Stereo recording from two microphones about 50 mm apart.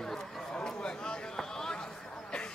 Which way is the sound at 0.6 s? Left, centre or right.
Left.